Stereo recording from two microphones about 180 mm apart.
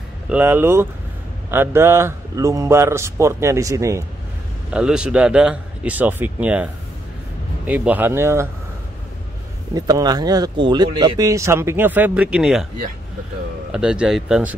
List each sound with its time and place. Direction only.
0.3 s speech: 10° right (ahead or behind)
4.7 s a man's voice: 5° right (ahead or behind)
9.8 s speech: 20° right (ahead or behind); by 12.6 s 5° right (ahead or behind)
13.7 s a man's voice: 5° right (ahead or behind)